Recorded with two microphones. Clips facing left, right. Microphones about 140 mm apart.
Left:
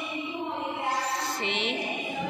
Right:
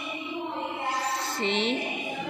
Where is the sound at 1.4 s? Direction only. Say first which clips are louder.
Right 8 dB; 35° right (ahead or behind).